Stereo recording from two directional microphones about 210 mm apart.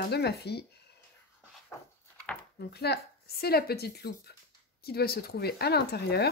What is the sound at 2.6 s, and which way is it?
Speech, 50° left (ahead or behind).